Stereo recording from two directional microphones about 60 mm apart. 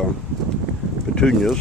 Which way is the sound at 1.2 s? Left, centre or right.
Centre.